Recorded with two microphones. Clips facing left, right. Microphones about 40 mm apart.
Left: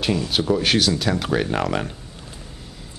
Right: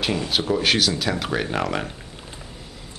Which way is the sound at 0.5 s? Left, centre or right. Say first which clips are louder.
Left 1 dB; centre.